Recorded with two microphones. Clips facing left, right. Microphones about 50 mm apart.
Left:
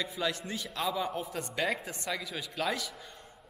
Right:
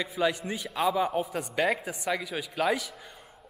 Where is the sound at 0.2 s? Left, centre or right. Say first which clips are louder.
Right 8 dB; centre.